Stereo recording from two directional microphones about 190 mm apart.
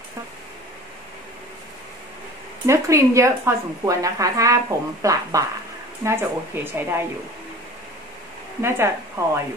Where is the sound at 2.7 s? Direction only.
15° right (ahead or behind).